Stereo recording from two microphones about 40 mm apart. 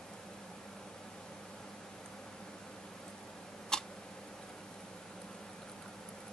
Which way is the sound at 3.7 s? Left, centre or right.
Centre.